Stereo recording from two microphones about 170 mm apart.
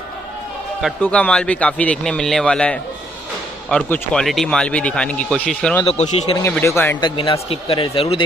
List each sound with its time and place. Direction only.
1.0 s speech: 10° left (ahead or behind)
5.9 s speech: 40° left (ahead or behind)
6.4 s speech: 15° left (ahead or behind)
7.0 s a man's voice: 30° left (ahead or behind)